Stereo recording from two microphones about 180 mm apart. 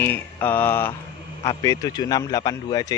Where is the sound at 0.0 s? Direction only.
10° left (ahead or behind).